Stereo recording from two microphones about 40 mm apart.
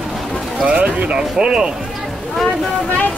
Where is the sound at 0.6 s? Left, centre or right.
Right.